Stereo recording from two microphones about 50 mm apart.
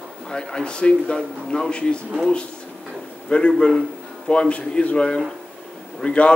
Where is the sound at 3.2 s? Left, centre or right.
Left.